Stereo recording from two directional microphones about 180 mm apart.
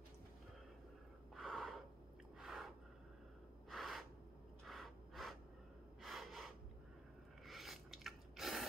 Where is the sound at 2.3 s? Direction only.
Centre (ahead or behind).